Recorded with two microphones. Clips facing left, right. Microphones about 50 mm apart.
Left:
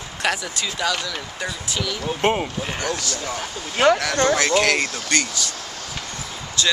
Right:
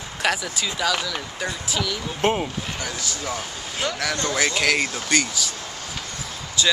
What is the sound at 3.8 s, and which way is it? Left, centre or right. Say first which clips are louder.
Speech: left 11 dB; left.